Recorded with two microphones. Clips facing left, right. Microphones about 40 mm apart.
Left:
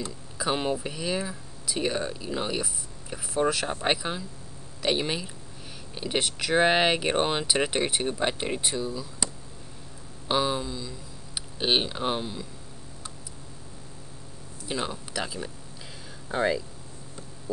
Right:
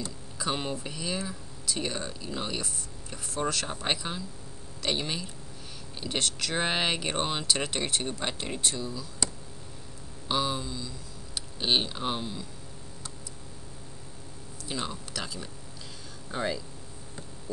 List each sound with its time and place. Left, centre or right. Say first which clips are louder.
0.0 s speech: left 3 dB; centre
14.6 s speech: left 3 dB; centre